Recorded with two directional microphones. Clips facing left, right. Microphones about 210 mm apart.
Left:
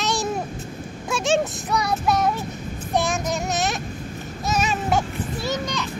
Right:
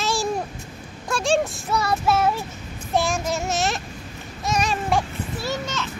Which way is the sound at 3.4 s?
Centre (ahead or behind).